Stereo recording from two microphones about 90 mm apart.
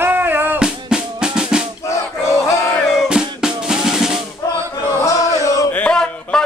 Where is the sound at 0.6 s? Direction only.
10° right (ahead or behind).